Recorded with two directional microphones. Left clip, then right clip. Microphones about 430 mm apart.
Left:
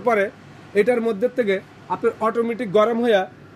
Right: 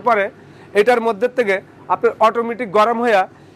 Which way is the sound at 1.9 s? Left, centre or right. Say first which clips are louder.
Right 7 dB; right.